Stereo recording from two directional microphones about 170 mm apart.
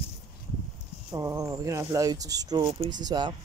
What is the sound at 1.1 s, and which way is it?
Speech, 20° right (ahead or behind).